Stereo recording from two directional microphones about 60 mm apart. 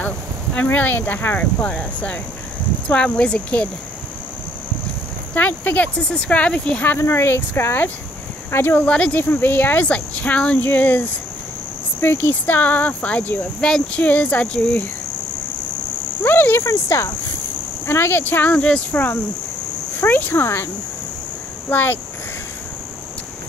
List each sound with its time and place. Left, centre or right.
0.6 s speech: left
5.3 s speech: left
5.9 s speech: centre
7.0 s speech: left
8.8 s speech: centre
9.1 s speech: left
13.6 s speech: centre
13.9 s speech: left
16.2 s speech: left
16.7 s speech: left
18.6 s speech: centre
20.0 s speech: left
21.6 s speech: left